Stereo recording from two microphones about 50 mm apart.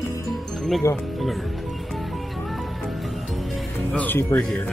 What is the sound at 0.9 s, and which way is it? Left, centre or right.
Speech, left.